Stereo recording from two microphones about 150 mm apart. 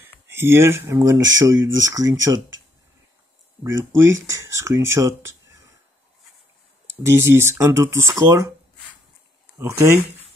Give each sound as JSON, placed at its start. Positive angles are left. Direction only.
{"t": 0.0, "sound": "speech", "side_deg": -15}
{"t": 3.6, "sound": "speech", "side_deg": -20}
{"t": 7.1, "sound": "speech", "side_deg": -15}
{"t": 9.6, "sound": "speech", "side_deg": -20}